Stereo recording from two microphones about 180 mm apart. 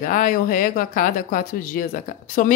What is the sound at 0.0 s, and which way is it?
Speech, 45° left (ahead or behind).